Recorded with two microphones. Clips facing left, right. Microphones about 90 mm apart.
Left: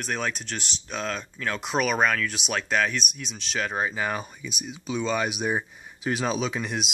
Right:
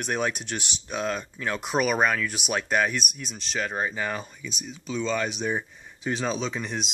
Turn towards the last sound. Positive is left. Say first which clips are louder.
# left 2 dB
turn(degrees=5)  # may be behind; listen again after turning